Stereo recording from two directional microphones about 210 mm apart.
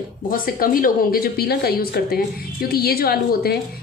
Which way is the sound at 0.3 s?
45° left (ahead or behind).